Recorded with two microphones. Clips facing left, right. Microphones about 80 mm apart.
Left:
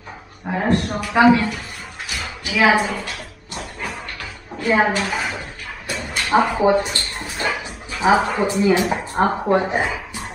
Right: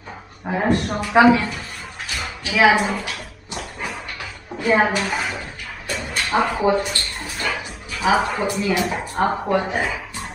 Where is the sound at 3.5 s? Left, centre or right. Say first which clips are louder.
Even; centre.